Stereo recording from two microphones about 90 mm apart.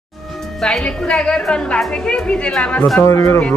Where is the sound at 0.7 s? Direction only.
10° left (ahead or behind).